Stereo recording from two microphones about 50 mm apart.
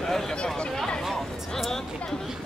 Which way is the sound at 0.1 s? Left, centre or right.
Centre.